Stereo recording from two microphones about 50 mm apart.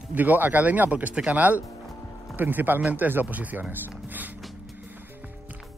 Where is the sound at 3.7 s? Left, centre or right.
Right.